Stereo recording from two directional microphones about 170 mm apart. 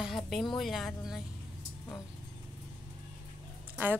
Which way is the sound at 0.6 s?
Centre (ahead or behind).